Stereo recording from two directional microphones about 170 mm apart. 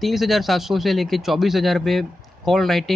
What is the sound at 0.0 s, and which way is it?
Speech, centre (ahead or behind).